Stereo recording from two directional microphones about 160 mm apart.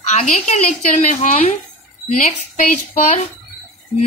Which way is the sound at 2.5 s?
50° left (ahead or behind).